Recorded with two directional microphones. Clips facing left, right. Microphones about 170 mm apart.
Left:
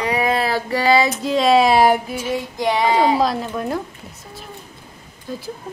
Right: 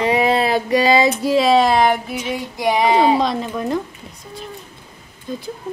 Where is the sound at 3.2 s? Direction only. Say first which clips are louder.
Even; 5° left (ahead or behind).